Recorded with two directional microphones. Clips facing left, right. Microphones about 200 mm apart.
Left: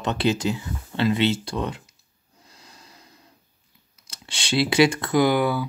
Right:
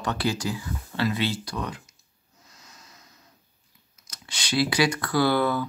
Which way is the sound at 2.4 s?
30° left (ahead or behind).